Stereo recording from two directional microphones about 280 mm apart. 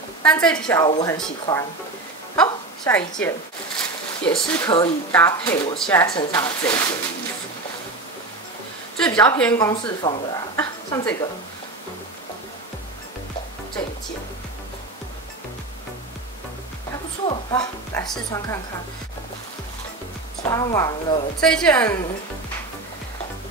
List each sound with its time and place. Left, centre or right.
0.2 s speech: centre
4.6 s speech: centre
8.9 s a sound: centre
9.4 s a woman's voice: centre
17.3 s speech: centre
20.4 s speech: centre
21.4 s a woman's voice: centre